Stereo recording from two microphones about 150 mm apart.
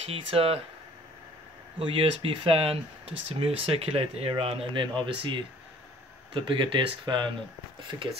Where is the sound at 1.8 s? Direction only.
35° right (ahead or behind).